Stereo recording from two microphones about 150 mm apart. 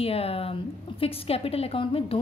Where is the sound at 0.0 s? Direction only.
40° left (ahead or behind).